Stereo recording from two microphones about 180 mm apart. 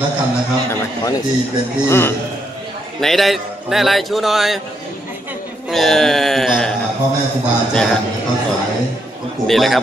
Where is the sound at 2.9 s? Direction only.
Centre (ahead or behind).